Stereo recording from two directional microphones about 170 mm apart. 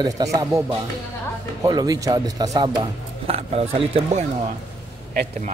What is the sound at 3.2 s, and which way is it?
Speech, 35° right (ahead or behind).